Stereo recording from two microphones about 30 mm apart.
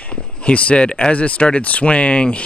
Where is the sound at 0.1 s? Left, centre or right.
Left.